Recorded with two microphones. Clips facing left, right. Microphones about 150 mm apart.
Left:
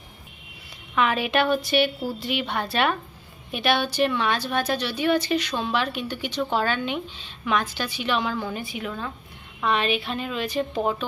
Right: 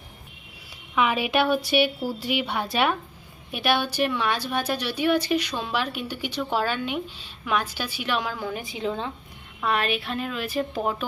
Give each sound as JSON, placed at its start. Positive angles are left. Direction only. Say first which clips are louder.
{"t": 0.9, "sound": "a woman's voice", "louder": "even", "side_deg": -10}
{"t": 8.7, "sound": "speech", "louder": "right 3 dB", "side_deg": -25}
{"t": 9.6, "sound": "speech", "louder": "left 2 dB", "side_deg": -5}